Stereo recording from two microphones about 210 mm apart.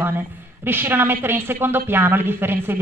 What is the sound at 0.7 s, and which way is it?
Speech, 10° right (ahead or behind).